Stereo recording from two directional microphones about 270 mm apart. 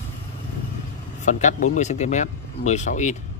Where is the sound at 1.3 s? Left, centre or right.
Left.